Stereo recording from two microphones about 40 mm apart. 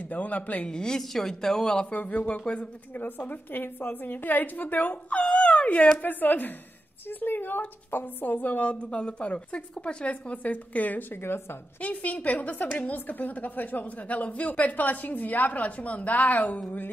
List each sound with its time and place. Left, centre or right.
0.1 s a woman's voice: left
0.7 s a woman's voice: centre
1.9 s speech: left
2.9 s a woman's voice: left
5.1 s speech: left
5.9 s a woman's voice: left
8.6 s a woman's voice: left